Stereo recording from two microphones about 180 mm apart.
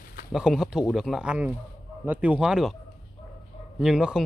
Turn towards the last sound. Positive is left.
turn(degrees=-5)  # may be behind; listen again after turning